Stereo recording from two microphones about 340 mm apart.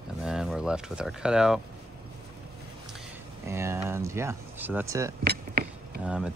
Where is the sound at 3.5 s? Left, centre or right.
Centre.